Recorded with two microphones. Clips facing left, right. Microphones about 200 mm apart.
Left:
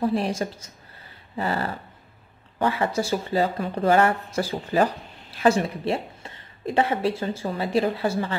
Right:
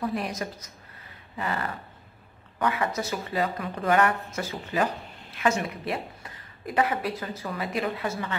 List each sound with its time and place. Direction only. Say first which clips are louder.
0.0 s a woman's voice: left 6 dB; 30° left (ahead or behind)
1.3 s dog: left 4 dB; 30° left (ahead or behind)
2.6 s a woman's voice: left 4 dB; 30° left (ahead or behind)